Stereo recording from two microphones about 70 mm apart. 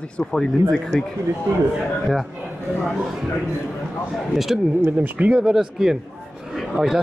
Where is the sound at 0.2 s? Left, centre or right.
Centre.